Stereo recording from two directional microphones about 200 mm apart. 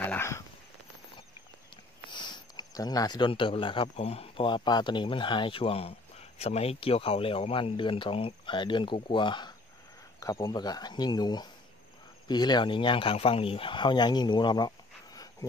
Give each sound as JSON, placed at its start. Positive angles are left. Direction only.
{"t": 0.0, "sound": "speech", "side_deg": 10}
{"t": 2.0, "sound": "speech", "side_deg": 20}